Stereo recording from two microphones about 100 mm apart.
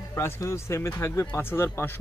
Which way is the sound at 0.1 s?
25° left (ahead or behind).